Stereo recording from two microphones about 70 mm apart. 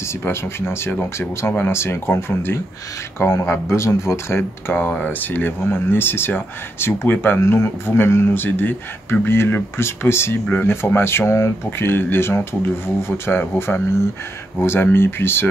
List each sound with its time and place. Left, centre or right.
0.2 s speech: left